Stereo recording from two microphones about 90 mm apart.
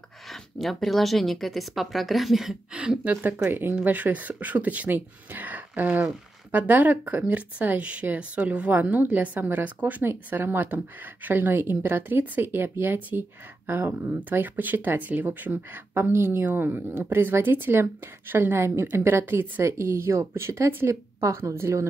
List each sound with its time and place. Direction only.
0.3 s speech: centre (ahead or behind); by 21.8 s 30° right (ahead or behind)